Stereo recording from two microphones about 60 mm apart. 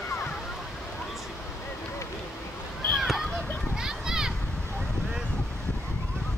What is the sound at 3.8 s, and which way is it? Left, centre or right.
Children playing, centre.